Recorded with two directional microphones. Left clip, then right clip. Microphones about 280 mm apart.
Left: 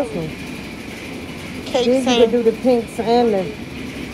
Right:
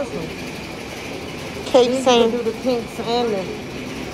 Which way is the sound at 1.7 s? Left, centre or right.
Centre.